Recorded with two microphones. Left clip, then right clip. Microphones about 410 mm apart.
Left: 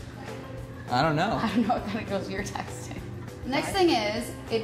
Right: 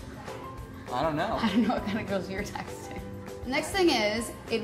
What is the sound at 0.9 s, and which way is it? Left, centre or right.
Speech, left.